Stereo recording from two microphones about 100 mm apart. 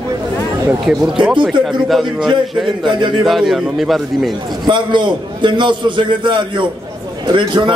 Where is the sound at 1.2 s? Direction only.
5° right (ahead or behind).